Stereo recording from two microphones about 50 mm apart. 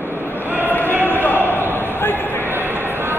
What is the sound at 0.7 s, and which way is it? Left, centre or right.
Basketball bounce, left.